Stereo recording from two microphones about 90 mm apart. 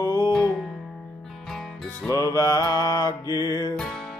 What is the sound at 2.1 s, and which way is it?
Music, 40° left (ahead or behind).